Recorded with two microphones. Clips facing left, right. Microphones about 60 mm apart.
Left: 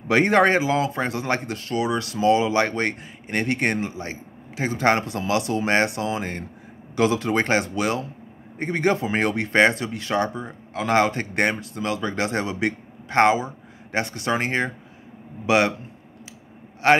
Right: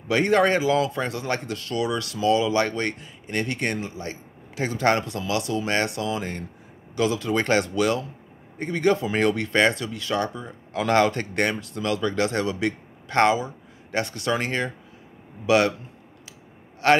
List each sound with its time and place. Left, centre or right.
0.1 s speech: left
7.4 s speech: centre
8.5 s speech: left
16.8 s speech: centre